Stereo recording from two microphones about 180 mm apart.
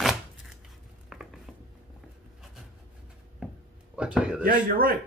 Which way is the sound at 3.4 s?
5° right (ahead or behind).